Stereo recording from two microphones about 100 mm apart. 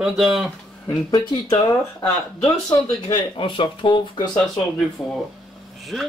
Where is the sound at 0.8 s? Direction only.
40° left (ahead or behind).